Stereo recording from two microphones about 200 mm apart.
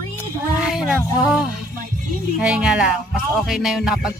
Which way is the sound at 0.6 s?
5° right (ahead or behind).